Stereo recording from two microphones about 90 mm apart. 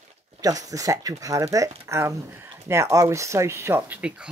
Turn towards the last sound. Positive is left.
turn(degrees=-15)  # may be behind; listen again after turning